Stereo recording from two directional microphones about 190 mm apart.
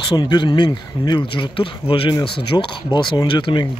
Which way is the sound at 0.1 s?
25° left (ahead or behind).